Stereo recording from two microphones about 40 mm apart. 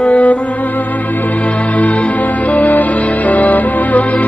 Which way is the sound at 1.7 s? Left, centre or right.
Left.